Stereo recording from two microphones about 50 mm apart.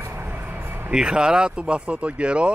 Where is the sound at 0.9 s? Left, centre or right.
Centre.